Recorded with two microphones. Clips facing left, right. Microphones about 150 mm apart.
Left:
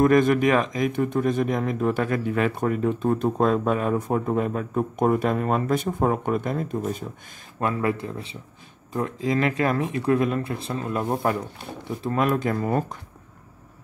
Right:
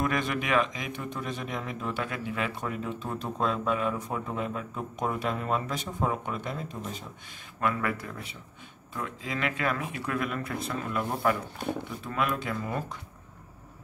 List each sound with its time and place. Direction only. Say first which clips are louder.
0.0 s speech: left 12 dB; 45° left (ahead or behind)
7.6 s speech: left 5 dB; 30° left (ahead or behind)
8.9 s speech: left 10 dB; 40° left (ahead or behind)